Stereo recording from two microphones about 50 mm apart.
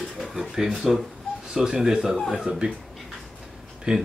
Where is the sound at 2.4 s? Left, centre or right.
Centre.